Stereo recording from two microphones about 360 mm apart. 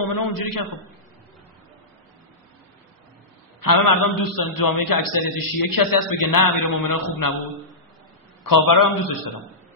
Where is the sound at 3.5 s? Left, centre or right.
Left.